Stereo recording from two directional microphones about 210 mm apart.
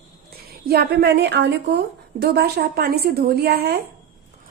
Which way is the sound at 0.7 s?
50° right (ahead or behind).